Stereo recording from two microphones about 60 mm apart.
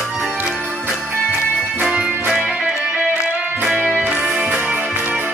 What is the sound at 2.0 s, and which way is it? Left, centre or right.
Music, right.